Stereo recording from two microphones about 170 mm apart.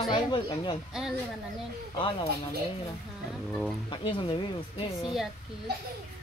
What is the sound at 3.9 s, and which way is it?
Speech, 30° left (ahead or behind).